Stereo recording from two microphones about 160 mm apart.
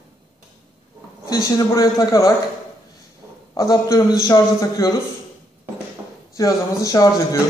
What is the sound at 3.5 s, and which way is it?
A man's voice, 20° left (ahead or behind).